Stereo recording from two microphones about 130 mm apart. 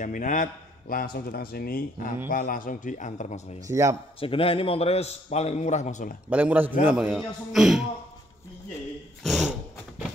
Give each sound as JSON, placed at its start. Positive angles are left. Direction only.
{"t": 0.0, "sound": "a man's voice", "side_deg": 80}
{"t": 3.6, "sound": "a man's voice", "side_deg": -25}
{"t": 4.2, "sound": "a man's voice", "side_deg": 45}
{"t": 6.3, "sound": "a man's voice", "side_deg": -10}
{"t": 9.2, "sound": "speech", "side_deg": 0}